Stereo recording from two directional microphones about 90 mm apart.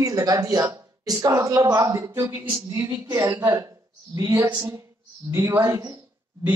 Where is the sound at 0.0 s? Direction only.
40° right (ahead or behind).